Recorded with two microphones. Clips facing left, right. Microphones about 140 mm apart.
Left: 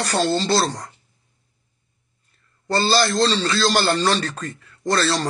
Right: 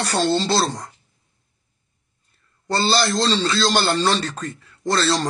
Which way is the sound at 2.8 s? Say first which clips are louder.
Left 1 dB; 25° right (ahead or behind).